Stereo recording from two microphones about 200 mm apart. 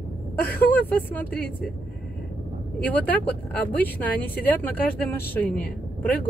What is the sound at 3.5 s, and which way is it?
Speech, 10° left (ahead or behind).